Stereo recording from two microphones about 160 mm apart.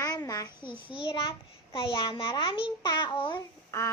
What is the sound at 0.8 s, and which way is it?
A child's voice, 35° left (ahead or behind).